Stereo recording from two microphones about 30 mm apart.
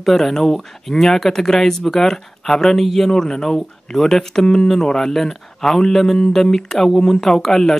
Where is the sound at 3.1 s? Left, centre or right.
Centre.